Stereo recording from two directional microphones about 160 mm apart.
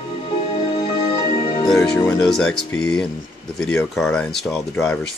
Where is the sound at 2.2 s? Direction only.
5° left (ahead or behind).